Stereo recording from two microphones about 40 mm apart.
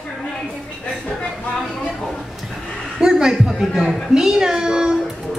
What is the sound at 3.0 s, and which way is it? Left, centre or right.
A woman's voice, centre.